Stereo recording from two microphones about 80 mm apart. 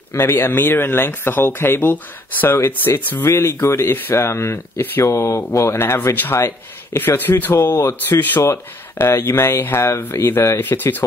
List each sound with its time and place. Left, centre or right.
0.1 s speech: left
3.3 s speech: left
10.6 s speech: left